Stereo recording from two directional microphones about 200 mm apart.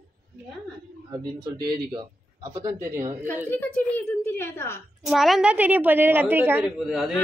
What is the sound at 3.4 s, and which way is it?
A woman's voice, 10° left (ahead or behind).